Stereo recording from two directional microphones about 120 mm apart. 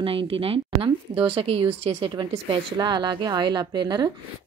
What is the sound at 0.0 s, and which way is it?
A woman's voice, 50° right (ahead or behind).